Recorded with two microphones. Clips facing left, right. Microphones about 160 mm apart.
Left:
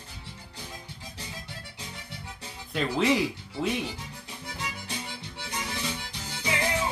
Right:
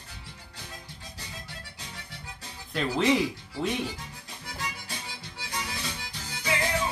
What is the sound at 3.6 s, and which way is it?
Speech, 5° left (ahead or behind).